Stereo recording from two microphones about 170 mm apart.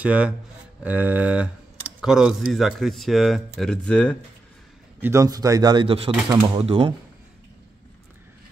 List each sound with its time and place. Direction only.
0.0 s a sound: 5° right (ahead or behind)
2.0 s speech: 5° right (ahead or behind)
5.0 s speech: 20° right (ahead or behind)